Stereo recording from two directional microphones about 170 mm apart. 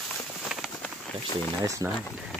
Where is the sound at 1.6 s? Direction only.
20° right (ahead or behind).